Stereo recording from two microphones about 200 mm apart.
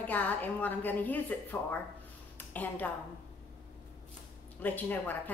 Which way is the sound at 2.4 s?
10° left (ahead or behind).